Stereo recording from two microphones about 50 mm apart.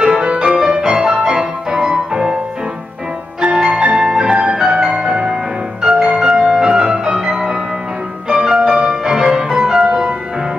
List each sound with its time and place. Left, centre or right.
0.0 s music: centre
3.4 s music: centre